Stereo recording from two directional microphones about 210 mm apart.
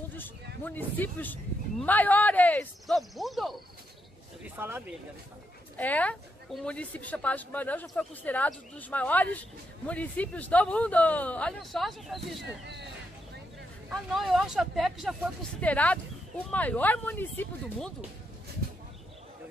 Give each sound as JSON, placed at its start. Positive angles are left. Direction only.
{"t": 0.7, "sound": "a woman's voice", "side_deg": 10}
{"t": 5.8, "sound": "a woman's voice", "side_deg": 5}
{"t": 12.6, "sound": "speech", "side_deg": -55}
{"t": 13.8, "sound": "a woman's voice", "side_deg": 0}